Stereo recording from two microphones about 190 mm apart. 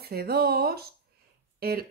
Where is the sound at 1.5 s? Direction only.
55° right (ahead or behind).